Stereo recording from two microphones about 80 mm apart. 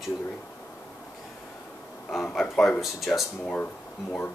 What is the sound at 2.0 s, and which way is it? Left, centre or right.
Speech, centre.